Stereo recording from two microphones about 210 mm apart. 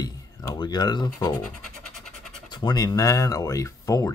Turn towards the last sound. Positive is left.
turn(degrees=15)  # may be behind; listen again after turning